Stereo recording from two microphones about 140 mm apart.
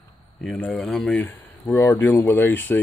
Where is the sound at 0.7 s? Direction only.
Centre (ahead or behind).